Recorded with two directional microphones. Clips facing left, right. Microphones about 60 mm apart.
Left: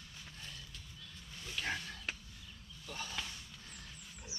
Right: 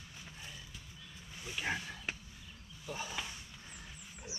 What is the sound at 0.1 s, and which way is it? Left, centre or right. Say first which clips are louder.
Pig: right 1 dB; centre.